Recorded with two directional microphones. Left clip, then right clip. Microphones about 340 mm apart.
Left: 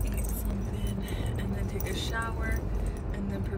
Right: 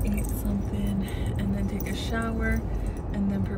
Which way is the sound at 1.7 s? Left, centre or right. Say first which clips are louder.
Right 2 dB; centre.